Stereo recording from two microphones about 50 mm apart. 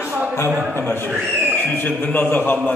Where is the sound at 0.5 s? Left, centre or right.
Right.